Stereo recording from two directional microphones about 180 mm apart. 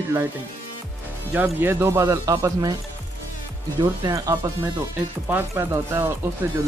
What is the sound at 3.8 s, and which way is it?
Speech, 20° right (ahead or behind).